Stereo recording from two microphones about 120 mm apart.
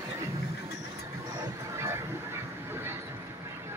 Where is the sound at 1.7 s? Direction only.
20° right (ahead or behind).